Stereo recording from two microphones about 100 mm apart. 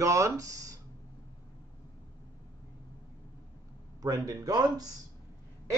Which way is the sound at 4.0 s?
35° right (ahead or behind).